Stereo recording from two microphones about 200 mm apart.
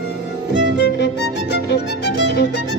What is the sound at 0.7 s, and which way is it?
Violin, 60° left (ahead or behind).